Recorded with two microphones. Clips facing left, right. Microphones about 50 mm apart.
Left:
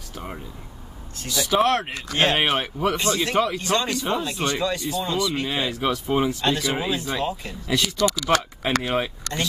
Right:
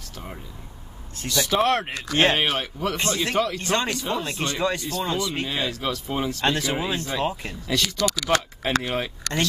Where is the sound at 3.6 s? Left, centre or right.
Right.